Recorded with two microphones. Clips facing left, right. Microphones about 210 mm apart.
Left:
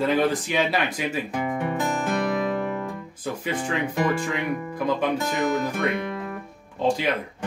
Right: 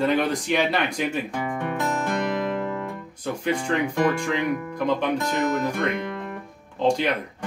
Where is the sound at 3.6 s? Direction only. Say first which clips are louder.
Right 1 dB; 5° left (ahead or behind).